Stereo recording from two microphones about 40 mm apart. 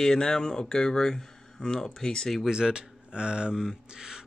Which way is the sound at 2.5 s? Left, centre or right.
Right.